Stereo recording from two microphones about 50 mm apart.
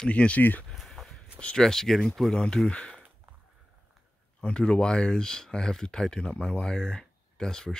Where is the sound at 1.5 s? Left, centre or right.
Centre.